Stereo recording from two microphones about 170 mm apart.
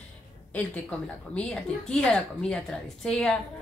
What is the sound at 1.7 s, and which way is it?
A woman's voice, 5° left (ahead or behind).